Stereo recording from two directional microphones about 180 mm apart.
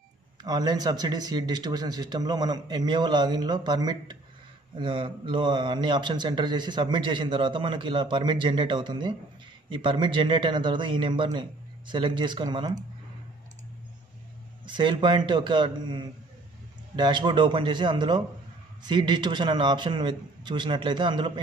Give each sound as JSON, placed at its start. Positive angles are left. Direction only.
{"t": 0.4, "sound": "a man's voice", "side_deg": -20}
{"t": 14.7, "sound": "a man's voice", "side_deg": -25}